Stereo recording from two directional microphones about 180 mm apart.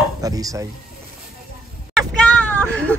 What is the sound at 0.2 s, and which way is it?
Dishes, 20° right (ahead or behind).